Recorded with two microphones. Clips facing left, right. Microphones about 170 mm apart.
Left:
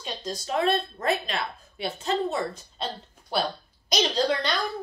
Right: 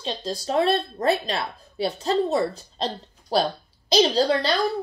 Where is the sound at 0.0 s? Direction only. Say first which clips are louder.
Right 5 dB; 30° right (ahead or behind).